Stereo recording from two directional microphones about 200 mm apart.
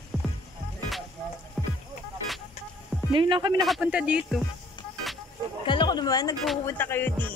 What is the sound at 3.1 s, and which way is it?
Speech, 25° right (ahead or behind).